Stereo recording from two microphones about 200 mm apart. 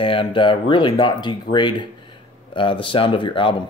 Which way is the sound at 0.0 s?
25° left (ahead or behind).